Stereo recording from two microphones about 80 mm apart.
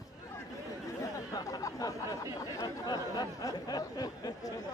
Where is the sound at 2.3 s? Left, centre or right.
Left.